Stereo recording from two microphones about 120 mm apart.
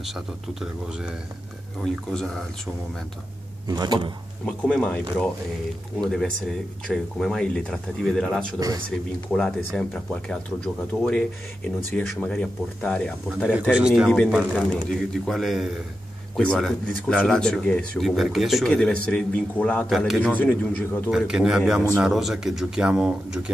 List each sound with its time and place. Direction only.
0.0 s speech: 5° right (ahead or behind)
3.6 s speech: 35° right (ahead or behind)
4.5 s speech: 10° left (ahead or behind)
13.5 s speech: 10° right (ahead or behind); by 19.9 s 10° left (ahead or behind)
19.9 s speech: centre (ahead or behind)
20.2 s speech: 10° left (ahead or behind)
21.1 s speech: 5° right (ahead or behind)